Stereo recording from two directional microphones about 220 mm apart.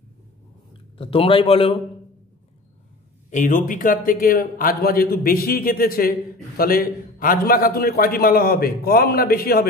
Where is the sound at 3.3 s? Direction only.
35° left (ahead or behind).